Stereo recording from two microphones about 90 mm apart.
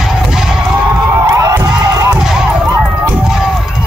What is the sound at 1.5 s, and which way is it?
Crowd, 45° right (ahead or behind).